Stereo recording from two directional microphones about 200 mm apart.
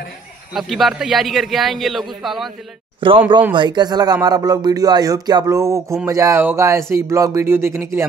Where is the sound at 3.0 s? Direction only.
25° right (ahead or behind).